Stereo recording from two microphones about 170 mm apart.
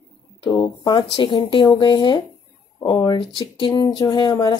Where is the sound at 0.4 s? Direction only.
25° left (ahead or behind).